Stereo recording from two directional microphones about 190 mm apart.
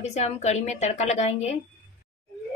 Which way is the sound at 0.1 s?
35° left (ahead or behind).